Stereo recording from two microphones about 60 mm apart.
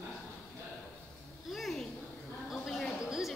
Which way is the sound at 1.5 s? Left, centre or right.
Centre.